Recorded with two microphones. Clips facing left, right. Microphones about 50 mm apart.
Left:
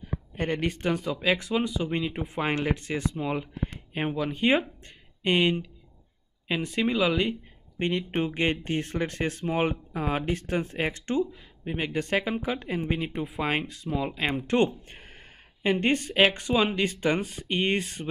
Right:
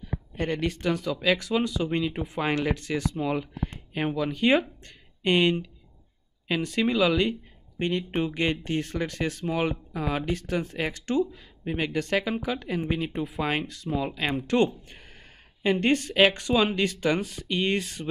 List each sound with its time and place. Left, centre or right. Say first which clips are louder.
0.4 s speech: even; left
11.2 s speech: right 2 dB; centre
11.8 s speech: right 1 dB; left